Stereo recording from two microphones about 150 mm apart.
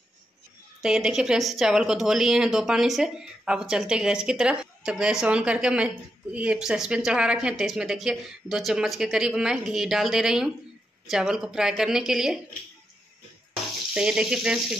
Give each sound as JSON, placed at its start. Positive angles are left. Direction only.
{"t": 0.8, "sound": "a woman's voice", "side_deg": -5}
{"t": 13.9, "sound": "a woman's voice", "side_deg": -5}